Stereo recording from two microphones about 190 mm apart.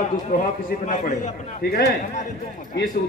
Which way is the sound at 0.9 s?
40° left (ahead or behind).